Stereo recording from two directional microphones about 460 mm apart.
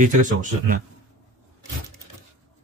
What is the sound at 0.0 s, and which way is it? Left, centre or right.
Speech, centre.